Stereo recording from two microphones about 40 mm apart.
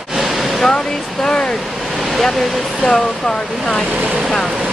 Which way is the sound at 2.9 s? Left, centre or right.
Centre.